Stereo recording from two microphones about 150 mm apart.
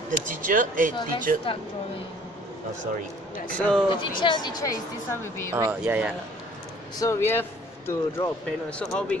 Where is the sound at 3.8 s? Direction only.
30° left (ahead or behind).